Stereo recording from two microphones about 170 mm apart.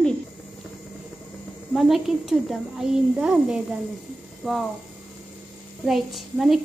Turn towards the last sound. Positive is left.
turn(degrees=0)  # may be behind; listen again after turning